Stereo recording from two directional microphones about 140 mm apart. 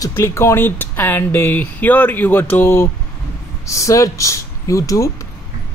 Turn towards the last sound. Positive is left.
turn(degrees=20)  # may be behind; listen again after turning